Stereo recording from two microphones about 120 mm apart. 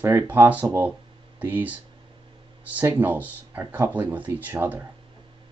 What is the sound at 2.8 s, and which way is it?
Speech, 15° right (ahead or behind).